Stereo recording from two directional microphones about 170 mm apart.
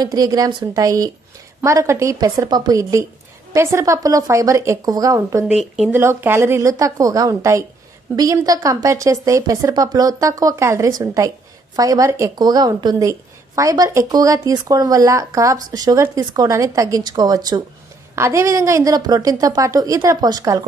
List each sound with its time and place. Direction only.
0.0 s speech: 20° right (ahead or behind)
5.4 s a woman's voice: 5° right (ahead or behind); by 20.6 s 20° right (ahead or behind)